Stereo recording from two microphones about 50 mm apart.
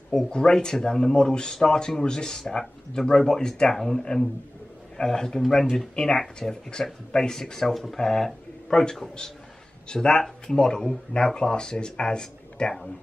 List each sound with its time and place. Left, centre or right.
0.3 s speech: centre